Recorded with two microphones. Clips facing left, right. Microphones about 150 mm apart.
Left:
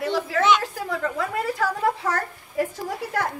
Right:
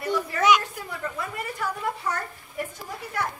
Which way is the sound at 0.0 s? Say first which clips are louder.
Left 2 dB; 90° left.